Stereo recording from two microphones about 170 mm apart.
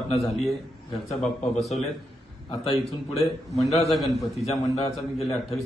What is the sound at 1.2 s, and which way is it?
Speech, centre (ahead or behind).